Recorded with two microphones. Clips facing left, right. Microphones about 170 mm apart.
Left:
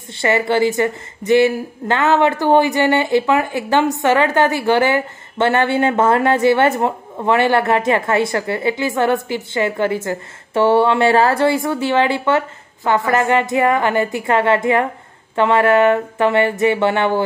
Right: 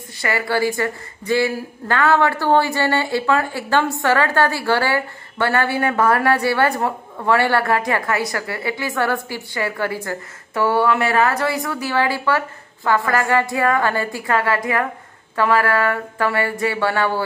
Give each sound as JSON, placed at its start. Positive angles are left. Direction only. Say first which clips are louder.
{"t": 0.1, "sound": "a woman's voice", "louder": "left 5 dB", "side_deg": 25}